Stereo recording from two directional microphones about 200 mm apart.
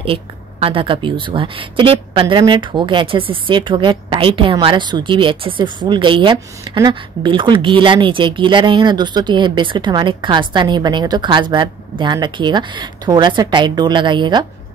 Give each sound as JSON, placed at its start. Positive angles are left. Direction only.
{"t": 0.0, "sound": "speech", "side_deg": -25}